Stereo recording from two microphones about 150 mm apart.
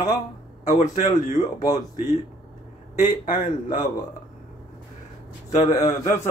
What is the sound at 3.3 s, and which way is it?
Speech, 60° left (ahead or behind).